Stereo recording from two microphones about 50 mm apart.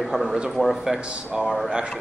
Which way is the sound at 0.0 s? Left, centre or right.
Centre.